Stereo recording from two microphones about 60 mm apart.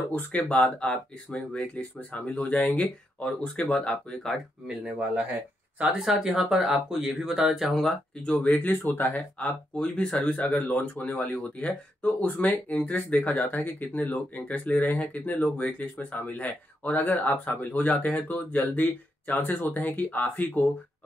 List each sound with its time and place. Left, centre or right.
0.1 s speech: left
3.2 s speech: centre
5.9 s speech: centre
8.2 s speech: left
9.4 s speech: centre